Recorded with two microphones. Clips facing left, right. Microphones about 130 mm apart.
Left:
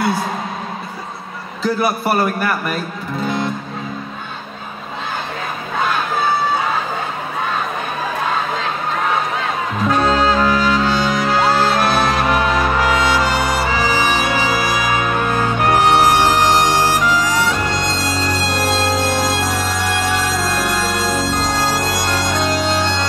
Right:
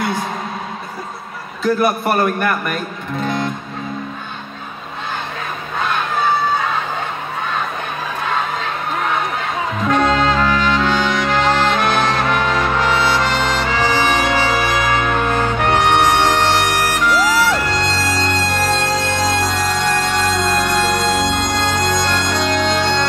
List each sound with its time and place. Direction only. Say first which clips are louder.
1.8 s a man's voice: even; 5° left (ahead or behind)
3.3 s music: even; centre (ahead or behind)
9.8 s music: even; 10° left (ahead or behind)
16.6 s bagpipes: left 2 dB; 20° left (ahead or behind)
17.5 s music: right 1 dB; 15° left (ahead or behind)